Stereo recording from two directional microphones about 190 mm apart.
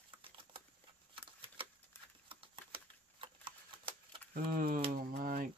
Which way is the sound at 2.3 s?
25° right (ahead or behind).